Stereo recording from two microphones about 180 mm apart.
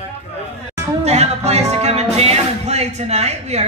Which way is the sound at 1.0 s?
35° right (ahead or behind).